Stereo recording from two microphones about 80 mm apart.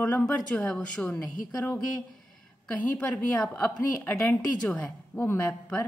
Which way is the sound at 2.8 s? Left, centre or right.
Centre.